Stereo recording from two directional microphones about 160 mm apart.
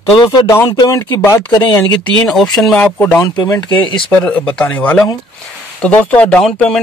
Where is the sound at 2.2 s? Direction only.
5° left (ahead or behind).